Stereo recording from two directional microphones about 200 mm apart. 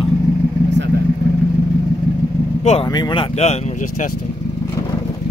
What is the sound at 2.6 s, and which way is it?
Speech, 30° left (ahead or behind).